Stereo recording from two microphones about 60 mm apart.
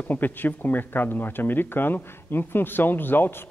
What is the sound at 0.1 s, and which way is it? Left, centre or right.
Speech, left.